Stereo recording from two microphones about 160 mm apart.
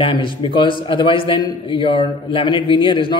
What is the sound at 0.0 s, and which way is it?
A man's voice, 30° left (ahead or behind).